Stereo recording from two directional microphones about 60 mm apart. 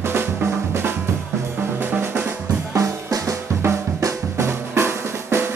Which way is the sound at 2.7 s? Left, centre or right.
Right.